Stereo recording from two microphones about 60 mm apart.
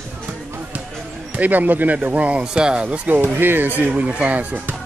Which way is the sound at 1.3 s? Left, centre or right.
Right.